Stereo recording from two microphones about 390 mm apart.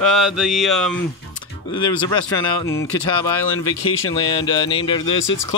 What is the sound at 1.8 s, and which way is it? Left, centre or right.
Speech, left.